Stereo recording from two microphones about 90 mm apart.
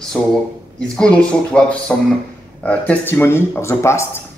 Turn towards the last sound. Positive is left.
turn(degrees=30)  # may be behind; listen again after turning